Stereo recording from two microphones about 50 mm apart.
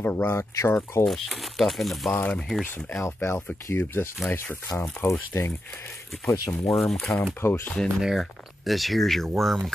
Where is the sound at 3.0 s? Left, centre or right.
Left.